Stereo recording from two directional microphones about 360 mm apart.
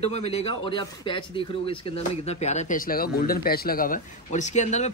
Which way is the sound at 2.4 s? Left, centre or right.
Centre.